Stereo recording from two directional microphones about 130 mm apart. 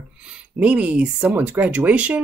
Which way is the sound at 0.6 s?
10° right (ahead or behind).